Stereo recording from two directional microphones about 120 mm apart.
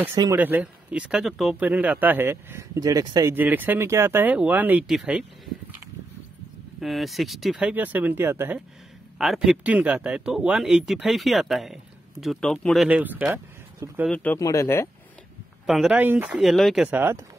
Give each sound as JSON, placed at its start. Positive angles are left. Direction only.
{"t": 0.4, "sound": "speech", "side_deg": -15}
{"t": 3.3, "sound": "speech", "side_deg": -15}
{"t": 6.8, "sound": "speech", "side_deg": 0}
{"t": 7.7, "sound": "speech", "side_deg": -15}
{"t": 9.2, "sound": "speech", "side_deg": -5}
{"t": 13.8, "sound": "speech", "side_deg": -25}
{"t": 14.1, "sound": "speech", "side_deg": 15}
{"t": 14.4, "sound": "speech", "side_deg": 25}
{"t": 15.6, "sound": "speech", "side_deg": -5}
{"t": 16.0, "sound": "speech", "side_deg": -15}
{"t": 16.4, "sound": "speech", "side_deg": 0}
{"t": 16.8, "sound": "speech", "side_deg": -15}